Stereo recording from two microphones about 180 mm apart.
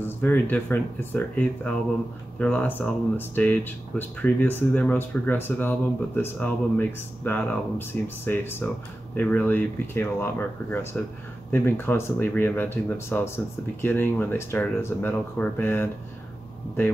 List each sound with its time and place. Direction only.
0.0 s speech: 10° left (ahead or behind)